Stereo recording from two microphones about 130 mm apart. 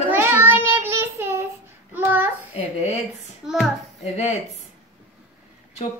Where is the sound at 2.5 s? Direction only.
55° left (ahead or behind).